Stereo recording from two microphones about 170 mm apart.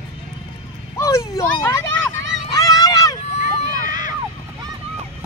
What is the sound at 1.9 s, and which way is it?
Vehicle, 90° right.